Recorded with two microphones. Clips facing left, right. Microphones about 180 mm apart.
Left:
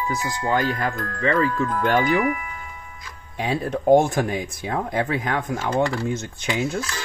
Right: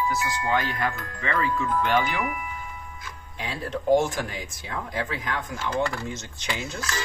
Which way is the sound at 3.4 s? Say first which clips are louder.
Left 7 dB; 55° left (ahead or behind).